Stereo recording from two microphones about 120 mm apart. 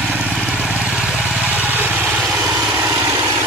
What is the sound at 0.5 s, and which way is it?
Vehicle, 5° right (ahead or behind).